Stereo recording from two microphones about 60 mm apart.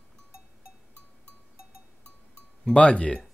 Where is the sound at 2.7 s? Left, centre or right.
Centre.